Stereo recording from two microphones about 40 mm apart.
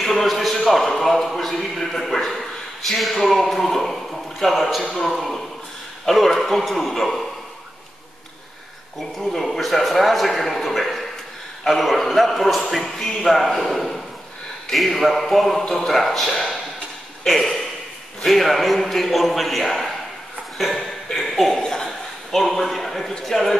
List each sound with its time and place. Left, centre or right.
0.0 s a sound: centre
1.0 s a man's voice: centre
9.1 s a man's voice: centre
21.5 s a man's voice: centre
21.8 s chuckle: centre
23.2 s a man's voice: centre